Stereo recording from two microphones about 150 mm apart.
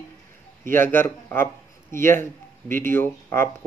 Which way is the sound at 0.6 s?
15° left (ahead or behind).